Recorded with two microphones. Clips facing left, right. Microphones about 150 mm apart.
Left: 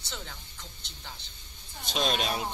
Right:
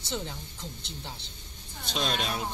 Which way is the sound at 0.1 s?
20° right (ahead or behind).